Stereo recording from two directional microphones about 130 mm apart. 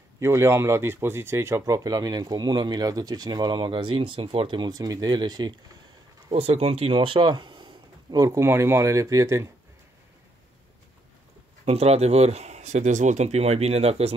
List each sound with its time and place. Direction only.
0.2 s speech: 20° right (ahead or behind)
6.3 s speech: 50° right (ahead or behind); by 9.5 s 25° right (ahead or behind)
11.6 s speech: 55° right (ahead or behind)